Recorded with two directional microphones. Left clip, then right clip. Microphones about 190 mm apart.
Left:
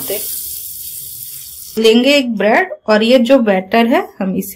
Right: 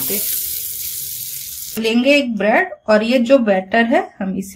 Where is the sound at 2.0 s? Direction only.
Centre (ahead or behind).